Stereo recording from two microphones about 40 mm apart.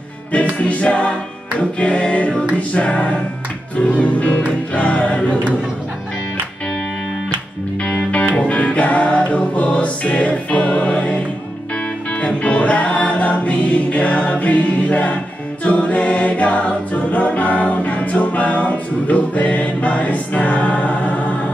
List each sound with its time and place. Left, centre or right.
0.3 s a capella: left
1.6 s music: left
8.1 s music: left
12.2 s music: left
15.6 s choir: left